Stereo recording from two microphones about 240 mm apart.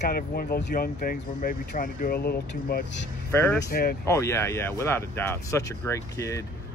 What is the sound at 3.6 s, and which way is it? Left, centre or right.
Speech, left.